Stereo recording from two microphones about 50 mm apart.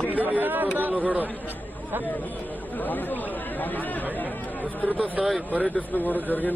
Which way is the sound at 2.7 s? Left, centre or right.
Left.